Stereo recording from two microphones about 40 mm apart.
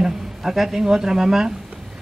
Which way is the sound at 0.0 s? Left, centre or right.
Centre.